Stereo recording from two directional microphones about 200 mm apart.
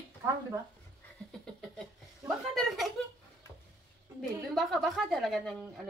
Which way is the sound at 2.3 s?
Centre (ahead or behind).